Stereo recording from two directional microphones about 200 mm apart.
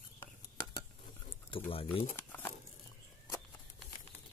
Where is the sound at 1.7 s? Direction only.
25° left (ahead or behind).